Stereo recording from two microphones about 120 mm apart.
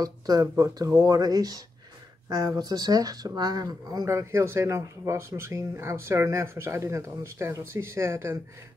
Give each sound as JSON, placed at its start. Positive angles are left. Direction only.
{"t": 0.0, "sound": "speech", "side_deg": -30}